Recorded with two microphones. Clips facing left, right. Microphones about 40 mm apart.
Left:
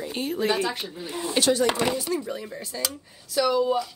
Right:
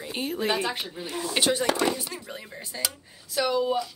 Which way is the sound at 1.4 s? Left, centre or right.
Right.